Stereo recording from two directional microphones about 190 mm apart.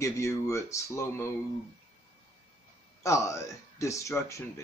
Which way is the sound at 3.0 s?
15° left (ahead or behind).